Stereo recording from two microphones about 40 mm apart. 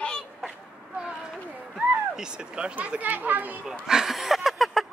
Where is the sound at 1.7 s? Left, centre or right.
Centre.